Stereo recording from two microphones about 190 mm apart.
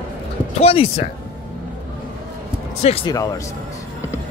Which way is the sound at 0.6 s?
30° left (ahead or behind).